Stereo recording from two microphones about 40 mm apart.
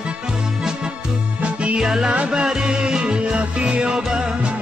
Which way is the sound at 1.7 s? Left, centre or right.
Centre.